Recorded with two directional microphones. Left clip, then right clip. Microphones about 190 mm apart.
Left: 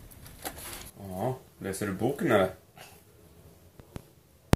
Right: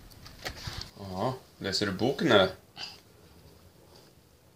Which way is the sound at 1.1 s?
30° right (ahead or behind).